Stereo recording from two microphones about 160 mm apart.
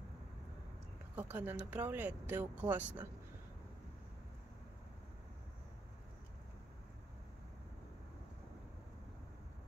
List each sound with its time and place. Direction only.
1.1 s speech: 10° right (ahead or behind)